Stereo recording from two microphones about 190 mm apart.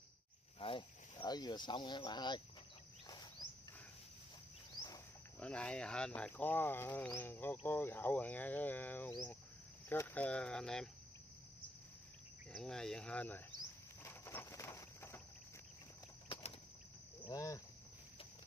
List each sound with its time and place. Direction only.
0.6 s speech: 25° left (ahead or behind)
5.4 s speech: 5° left (ahead or behind)
12.5 s speech: 5° left (ahead or behind)
14.0 s walk: 15° left (ahead or behind)
17.2 s speech: 20° left (ahead or behind)